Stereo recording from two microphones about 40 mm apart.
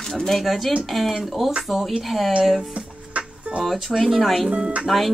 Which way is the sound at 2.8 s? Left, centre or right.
Right.